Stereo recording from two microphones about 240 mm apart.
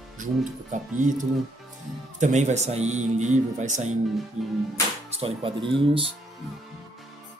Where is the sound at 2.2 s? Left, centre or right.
Right.